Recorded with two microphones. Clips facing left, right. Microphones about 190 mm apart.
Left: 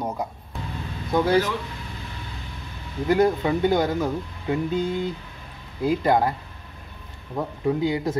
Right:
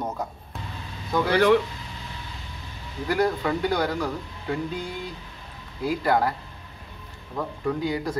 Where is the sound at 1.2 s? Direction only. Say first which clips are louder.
Right 3 dB; 70° right (ahead or behind).